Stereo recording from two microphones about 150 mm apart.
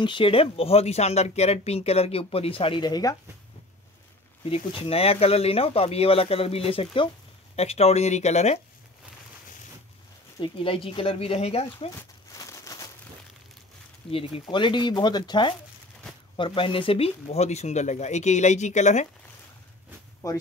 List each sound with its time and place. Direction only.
0.0 s speech: 35° left (ahead or behind)
4.7 s speech: 40° left (ahead or behind)
10.4 s speech: 35° left (ahead or behind)
12.0 s crumpling: 20° left (ahead or behind)
14.1 s speech: 40° left (ahead or behind)
20.2 s speech: 20° left (ahead or behind)